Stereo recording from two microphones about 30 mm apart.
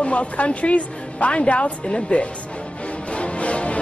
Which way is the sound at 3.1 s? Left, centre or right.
Left.